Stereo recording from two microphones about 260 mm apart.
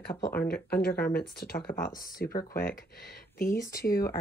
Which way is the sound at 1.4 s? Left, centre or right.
Left.